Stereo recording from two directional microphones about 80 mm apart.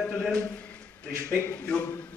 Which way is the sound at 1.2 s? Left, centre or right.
Left.